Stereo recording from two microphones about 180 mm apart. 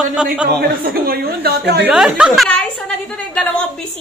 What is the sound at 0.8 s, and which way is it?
A woman's voice, 60° right (ahead or behind).